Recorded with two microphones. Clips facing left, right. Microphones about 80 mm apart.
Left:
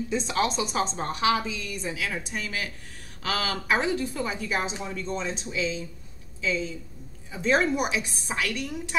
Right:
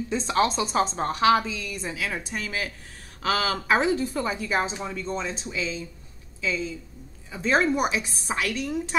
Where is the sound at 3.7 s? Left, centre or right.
Right.